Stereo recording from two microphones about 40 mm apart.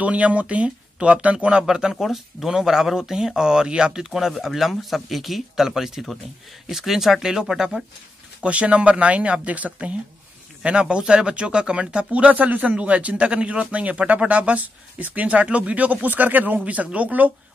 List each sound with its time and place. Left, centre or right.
0.0 s speech: right; by 7.8 s centre
8.4 s speech: right
12.1 s speech: right